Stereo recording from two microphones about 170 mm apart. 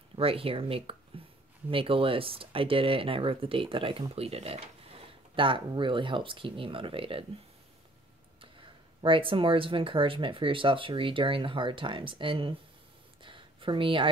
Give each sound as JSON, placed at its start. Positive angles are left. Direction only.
{"t": 0.1, "sound": "speech", "side_deg": -35}
{"t": 9.0, "sound": "speech", "side_deg": -30}
{"t": 13.2, "sound": "a sound", "side_deg": -30}